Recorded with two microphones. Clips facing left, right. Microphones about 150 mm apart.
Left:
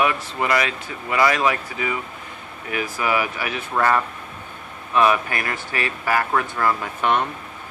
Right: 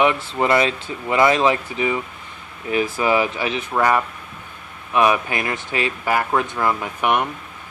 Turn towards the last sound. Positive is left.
turn(degrees=-15)  # may be behind; listen again after turning